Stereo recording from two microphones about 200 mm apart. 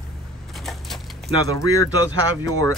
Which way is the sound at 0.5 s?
Centre (ahead or behind).